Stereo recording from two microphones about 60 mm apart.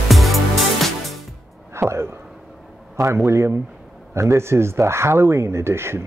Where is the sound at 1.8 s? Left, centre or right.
Right.